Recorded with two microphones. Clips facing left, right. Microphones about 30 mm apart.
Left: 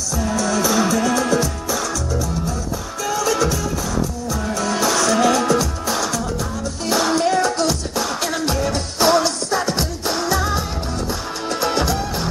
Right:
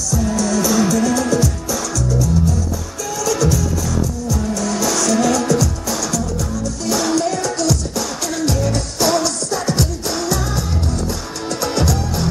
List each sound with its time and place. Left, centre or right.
0.1 s music: left
3.1 s music: left
11.6 s music: left